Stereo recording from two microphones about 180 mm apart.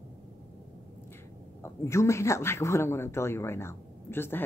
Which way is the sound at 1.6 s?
15° left (ahead or behind).